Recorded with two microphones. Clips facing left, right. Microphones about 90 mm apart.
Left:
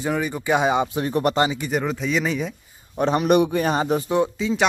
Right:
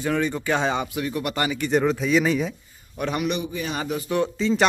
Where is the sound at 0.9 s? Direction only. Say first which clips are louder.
Left 5 dB; 35° left (ahead or behind).